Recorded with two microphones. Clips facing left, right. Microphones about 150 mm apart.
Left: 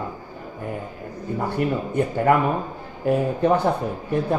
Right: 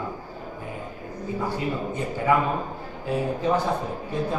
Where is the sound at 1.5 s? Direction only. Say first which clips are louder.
Left 6 dB; 60° left (ahead or behind).